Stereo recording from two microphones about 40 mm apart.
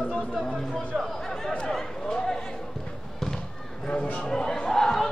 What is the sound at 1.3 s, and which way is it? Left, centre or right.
Chatter, centre.